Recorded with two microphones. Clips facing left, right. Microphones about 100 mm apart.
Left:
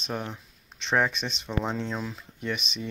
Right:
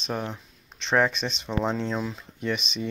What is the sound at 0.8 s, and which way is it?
Speech, 10° left (ahead or behind).